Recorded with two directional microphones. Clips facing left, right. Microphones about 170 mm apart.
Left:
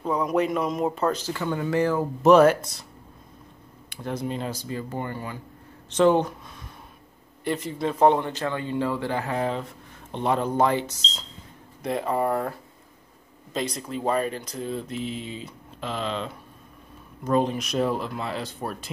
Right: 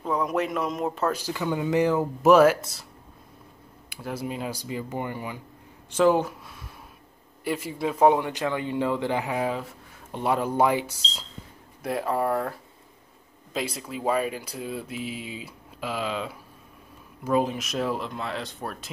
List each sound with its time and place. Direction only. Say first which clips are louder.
0.0 s speech: left 2 dB; centre (ahead or behind)
1.2 s speech: even; 15° right (ahead or behind)
2.2 s speech: left 1 dB; 5° right (ahead or behind)
3.9 s speech: left 2 dB; 5° right (ahead or behind)